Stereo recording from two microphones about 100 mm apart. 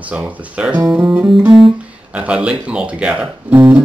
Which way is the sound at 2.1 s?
10° right (ahead or behind).